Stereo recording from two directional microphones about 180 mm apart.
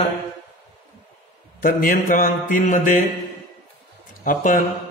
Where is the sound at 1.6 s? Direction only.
50° left (ahead or behind).